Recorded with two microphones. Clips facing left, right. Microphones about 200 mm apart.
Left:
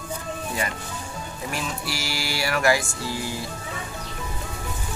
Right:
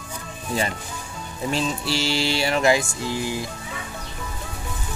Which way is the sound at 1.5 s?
25° right (ahead or behind).